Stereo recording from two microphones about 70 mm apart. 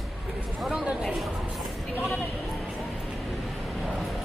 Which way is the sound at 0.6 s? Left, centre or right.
Centre.